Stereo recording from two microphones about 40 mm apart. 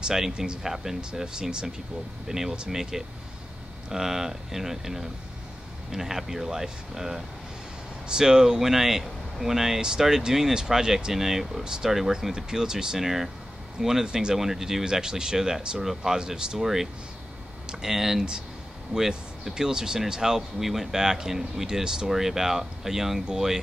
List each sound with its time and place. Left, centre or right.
0.1 s speech: centre
2.2 s speech: centre
11.6 s speech: centre
16.5 s speech: centre